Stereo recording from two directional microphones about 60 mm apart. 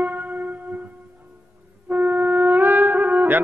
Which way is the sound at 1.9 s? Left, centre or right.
Right.